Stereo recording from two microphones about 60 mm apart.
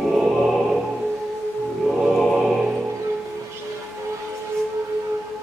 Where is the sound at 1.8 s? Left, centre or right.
Centre.